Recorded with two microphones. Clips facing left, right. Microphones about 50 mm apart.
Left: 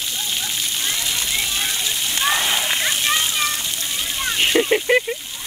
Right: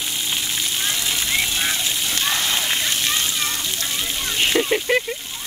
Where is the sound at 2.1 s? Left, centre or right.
Centre.